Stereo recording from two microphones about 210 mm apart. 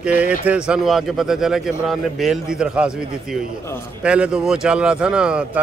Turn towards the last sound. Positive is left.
turn(degrees=-5)  # may be behind; listen again after turning